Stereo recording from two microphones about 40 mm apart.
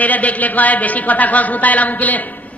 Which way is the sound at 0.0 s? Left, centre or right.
Left.